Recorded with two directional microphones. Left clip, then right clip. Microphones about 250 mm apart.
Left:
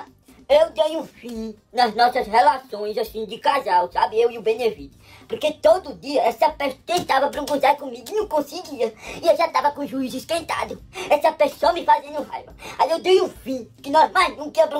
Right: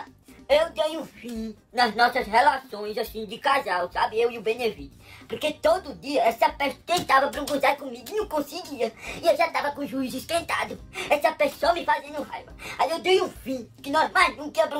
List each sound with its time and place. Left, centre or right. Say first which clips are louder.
0.5 s a child's voice: left 5 dB; centre